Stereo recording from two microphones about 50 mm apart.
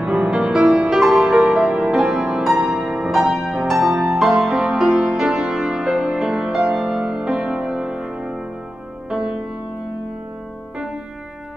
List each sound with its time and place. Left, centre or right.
0.0 s music: centre
3.9 s music: centre